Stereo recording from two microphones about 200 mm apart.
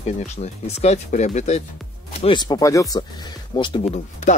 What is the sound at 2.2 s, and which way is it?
Speech, 20° left (ahead or behind).